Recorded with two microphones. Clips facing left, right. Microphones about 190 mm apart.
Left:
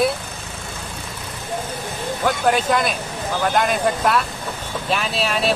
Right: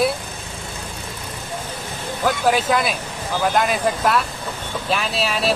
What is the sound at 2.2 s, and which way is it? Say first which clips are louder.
Speech: even; centre (ahead or behind).